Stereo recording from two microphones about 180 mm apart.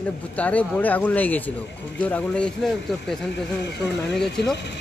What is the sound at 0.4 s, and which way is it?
Speech, 10° left (ahead or behind).